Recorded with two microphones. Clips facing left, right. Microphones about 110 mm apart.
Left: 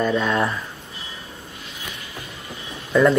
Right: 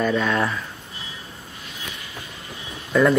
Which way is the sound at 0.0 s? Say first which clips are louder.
Left 1 dB; 10° left (ahead or behind).